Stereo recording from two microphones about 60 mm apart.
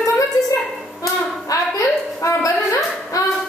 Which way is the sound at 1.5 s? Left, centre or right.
Left.